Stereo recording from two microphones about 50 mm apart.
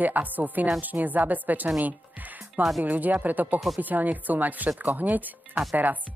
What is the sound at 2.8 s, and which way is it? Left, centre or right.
Speech, right.